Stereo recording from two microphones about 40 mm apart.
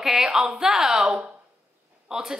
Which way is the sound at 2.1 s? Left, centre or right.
Centre.